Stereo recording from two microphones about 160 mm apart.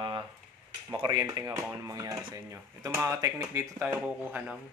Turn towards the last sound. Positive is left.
turn(degrees=-5)  # may be behind; listen again after turning